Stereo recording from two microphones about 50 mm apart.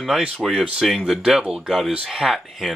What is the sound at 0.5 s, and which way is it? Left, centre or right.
Speech, centre.